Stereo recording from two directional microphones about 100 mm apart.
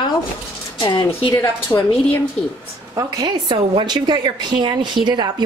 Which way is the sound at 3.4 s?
50° right (ahead or behind).